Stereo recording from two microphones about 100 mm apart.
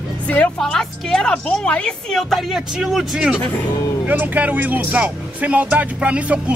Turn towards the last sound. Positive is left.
turn(degrees=-10)  # may be behind; listen again after turning